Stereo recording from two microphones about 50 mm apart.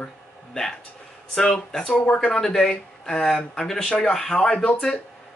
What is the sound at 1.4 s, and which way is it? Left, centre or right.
Speech, centre.